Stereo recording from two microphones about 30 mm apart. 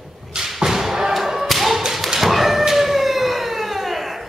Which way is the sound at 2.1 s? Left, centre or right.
Centre.